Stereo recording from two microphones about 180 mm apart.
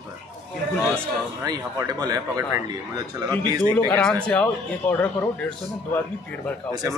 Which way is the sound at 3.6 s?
10° left (ahead or behind).